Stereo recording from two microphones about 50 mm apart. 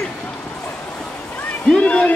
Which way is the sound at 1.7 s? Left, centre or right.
Left.